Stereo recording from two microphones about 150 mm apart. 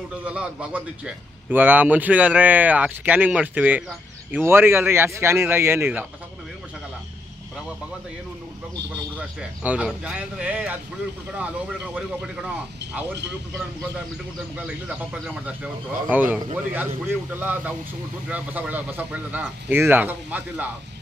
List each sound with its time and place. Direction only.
0.2 s a man's voice: 5° right (ahead or behind)
9.6 s a man's voice: 10° right (ahead or behind)
14.9 s a man's voice: 5° right (ahead or behind)